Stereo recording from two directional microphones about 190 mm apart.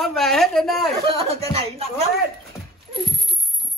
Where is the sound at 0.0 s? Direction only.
Centre (ahead or behind).